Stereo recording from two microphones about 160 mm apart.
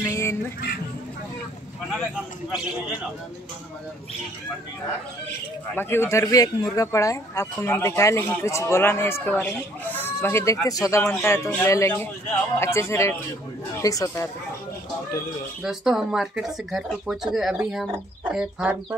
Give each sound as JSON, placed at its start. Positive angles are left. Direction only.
{"t": 0.0, "sound": "music", "side_deg": 15}
{"t": 5.8, "sound": "speech", "side_deg": 15}
{"t": 15.6, "sound": "speech", "side_deg": 0}